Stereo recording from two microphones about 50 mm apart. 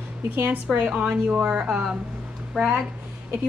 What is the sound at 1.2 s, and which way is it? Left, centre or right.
Speech, right.